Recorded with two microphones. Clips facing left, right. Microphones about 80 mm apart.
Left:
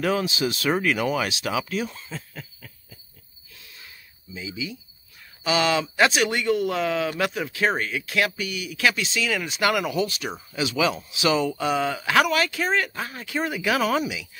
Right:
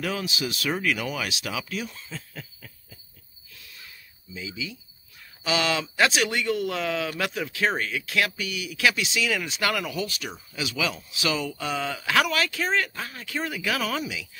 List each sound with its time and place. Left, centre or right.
0.0 s speech: left
2.3 s owl: centre
4.3 s speech: centre
9.7 s speech: centre